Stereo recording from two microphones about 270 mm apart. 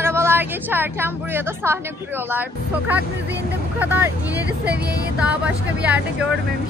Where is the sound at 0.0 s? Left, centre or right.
Centre.